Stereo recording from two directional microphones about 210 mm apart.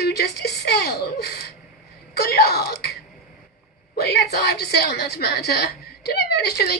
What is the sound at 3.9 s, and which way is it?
A woman's voice, 50° left (ahead or behind).